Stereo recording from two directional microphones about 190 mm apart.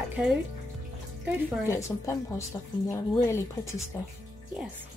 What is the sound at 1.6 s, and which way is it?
Speech, 15° left (ahead or behind).